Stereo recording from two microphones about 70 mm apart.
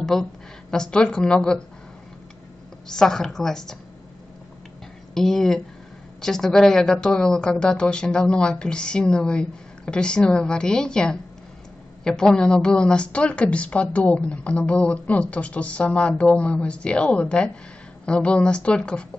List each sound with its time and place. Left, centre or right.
0.0 s a woman's voice: centre
2.9 s a woman's voice: centre
5.1 s a woman's voice: centre